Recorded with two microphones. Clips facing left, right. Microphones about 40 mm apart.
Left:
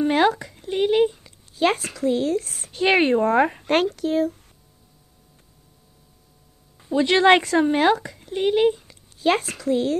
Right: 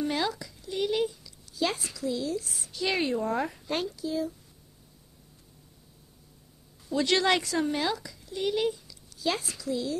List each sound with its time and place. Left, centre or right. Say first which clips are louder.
0.0 s speech: left 10 dB; left
6.8 s speech: left 8 dB; left